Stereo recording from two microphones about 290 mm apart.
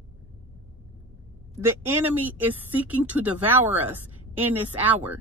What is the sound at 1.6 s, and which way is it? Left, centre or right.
A woman's voice, centre.